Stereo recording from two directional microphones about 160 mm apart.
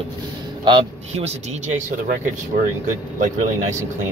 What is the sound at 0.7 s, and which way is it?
A man's voice, 35° right (ahead or behind).